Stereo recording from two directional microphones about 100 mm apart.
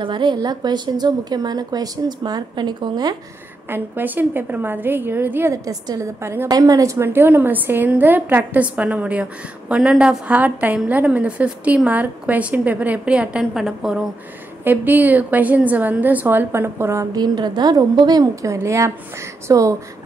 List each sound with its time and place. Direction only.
0.0 s a woman's voice: 50° right (ahead or behind)
3.6 s a woman's voice: 20° right (ahead or behind)
5.5 s a woman's voice: 35° right (ahead or behind)
6.5 s a woman's voice: 35° right (ahead or behind); by 14.0 s 5° right (ahead or behind)
14.6 s a woman's voice: 20° right (ahead or behind)
17.1 s a woman's voice: 45° right (ahead or behind)